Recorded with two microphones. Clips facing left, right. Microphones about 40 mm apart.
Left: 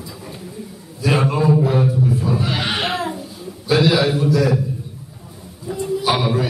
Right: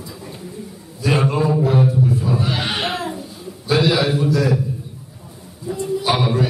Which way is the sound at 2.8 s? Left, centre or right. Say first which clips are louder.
Left 1 dB; centre.